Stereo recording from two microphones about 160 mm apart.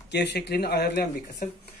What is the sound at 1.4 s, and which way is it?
Speech, 60° left (ahead or behind).